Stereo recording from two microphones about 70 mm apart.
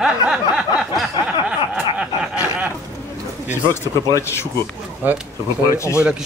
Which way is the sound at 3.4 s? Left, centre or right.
Left.